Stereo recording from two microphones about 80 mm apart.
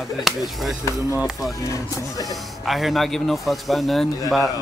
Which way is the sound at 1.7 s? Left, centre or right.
Left.